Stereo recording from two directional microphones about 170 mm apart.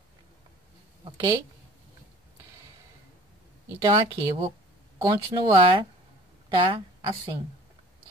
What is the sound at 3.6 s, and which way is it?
A woman's voice, 20° right (ahead or behind).